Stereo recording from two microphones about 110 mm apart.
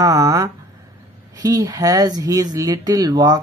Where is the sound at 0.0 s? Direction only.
30° right (ahead or behind).